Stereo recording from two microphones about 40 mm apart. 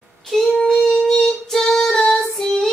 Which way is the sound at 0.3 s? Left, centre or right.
Centre.